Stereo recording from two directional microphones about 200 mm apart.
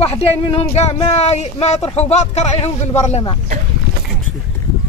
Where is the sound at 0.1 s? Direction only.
30° left (ahead or behind).